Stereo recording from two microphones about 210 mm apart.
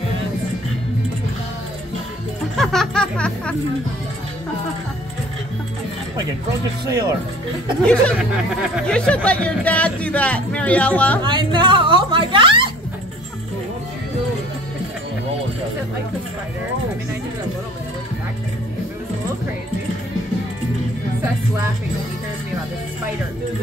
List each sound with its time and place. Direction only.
2.5 s music: centre (ahead or behind)
6.9 s speech: 15° right (ahead or behind)
7.8 s speech: 5° left (ahead or behind)
11.2 s a woman's voice: 20° right (ahead or behind)